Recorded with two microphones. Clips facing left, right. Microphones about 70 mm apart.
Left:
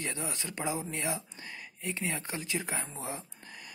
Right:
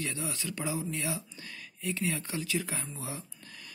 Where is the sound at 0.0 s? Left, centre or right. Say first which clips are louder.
Right 1 dB; left.